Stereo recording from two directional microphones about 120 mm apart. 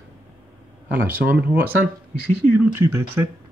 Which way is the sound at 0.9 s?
15° right (ahead or behind).